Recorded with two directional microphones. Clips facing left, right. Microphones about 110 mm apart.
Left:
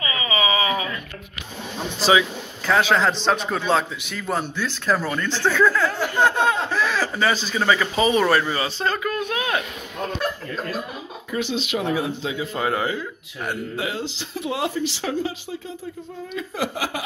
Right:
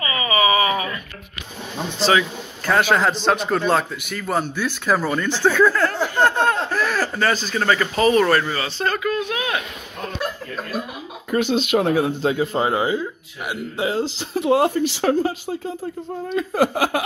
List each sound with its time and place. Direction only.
0.0 s a sound: 10° left (ahead or behind)
2.0 s speech: 5° left (ahead or behind)
2.7 s a man's voice: 5° right (ahead or behind); by 9.0 s 15° left (ahead or behind)
11.2 s speech: 50° right (ahead or behind)
12.5 s speech: 20° right (ahead or behind)
13.7 s speech: 35° right (ahead or behind); by 15.7 s 50° right (ahead or behind)
16.3 s a sound: 55° right (ahead or behind)